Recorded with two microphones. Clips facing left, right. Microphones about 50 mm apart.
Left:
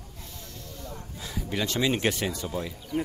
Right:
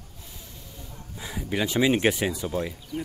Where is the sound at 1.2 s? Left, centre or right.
Centre.